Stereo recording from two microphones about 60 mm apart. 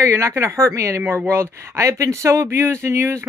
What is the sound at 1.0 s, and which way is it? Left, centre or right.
Speech, right.